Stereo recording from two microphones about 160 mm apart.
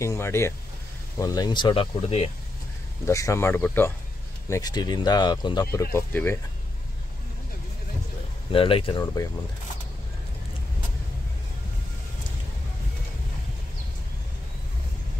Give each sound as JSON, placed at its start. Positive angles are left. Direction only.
{"t": 0.0, "sound": "speech", "side_deg": 15}
{"t": 3.1, "sound": "speech", "side_deg": 20}
{"t": 4.5, "sound": "speech", "side_deg": 25}
{"t": 8.5, "sound": "speech", "side_deg": 35}